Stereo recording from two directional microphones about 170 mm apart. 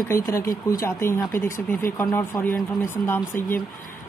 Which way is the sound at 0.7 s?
15° left (ahead or behind).